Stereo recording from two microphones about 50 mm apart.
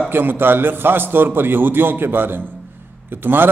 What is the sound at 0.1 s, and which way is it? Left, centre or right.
A man's voice, right.